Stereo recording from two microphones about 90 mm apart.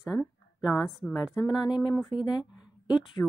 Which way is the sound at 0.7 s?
40° left (ahead or behind).